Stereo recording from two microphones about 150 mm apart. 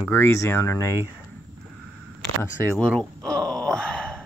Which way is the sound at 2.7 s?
5° left (ahead or behind).